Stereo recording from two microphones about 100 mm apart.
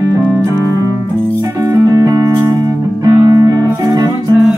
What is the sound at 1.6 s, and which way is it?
Music, 40° right (ahead or behind).